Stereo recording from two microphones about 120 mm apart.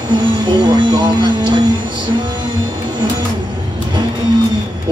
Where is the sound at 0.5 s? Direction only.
35° right (ahead or behind).